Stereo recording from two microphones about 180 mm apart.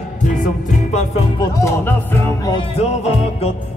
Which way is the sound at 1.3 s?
15° left (ahead or behind).